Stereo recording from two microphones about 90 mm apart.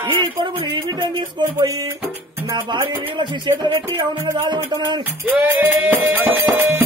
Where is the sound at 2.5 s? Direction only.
60° right (ahead or behind).